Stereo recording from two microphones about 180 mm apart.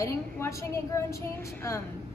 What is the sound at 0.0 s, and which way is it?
A woman's voice, 15° left (ahead or behind).